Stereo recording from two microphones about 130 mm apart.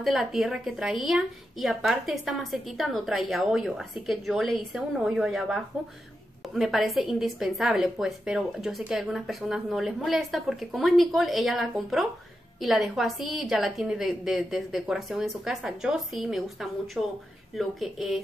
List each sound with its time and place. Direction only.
0.0 s a woman's voice: centre (ahead or behind)